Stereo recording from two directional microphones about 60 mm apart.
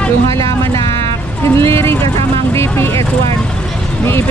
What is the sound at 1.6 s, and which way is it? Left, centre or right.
Speech, left.